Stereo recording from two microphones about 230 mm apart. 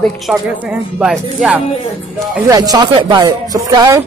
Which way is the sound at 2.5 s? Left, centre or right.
Centre.